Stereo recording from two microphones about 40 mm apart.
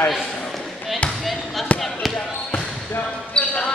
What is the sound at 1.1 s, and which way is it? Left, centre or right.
Basketball bounce, centre.